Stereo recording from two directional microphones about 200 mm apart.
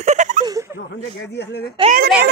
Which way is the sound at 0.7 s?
60° left (ahead or behind).